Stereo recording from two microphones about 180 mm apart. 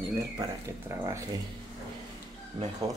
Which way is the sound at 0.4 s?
15° right (ahead or behind).